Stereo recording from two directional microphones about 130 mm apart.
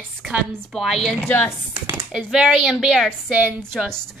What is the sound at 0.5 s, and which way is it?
A woman's voice, centre (ahead or behind).